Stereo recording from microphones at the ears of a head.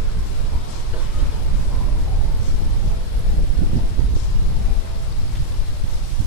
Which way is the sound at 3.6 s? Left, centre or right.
Right.